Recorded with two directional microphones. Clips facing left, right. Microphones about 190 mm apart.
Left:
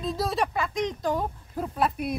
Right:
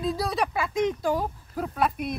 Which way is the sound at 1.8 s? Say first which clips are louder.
Even; centre (ahead or behind).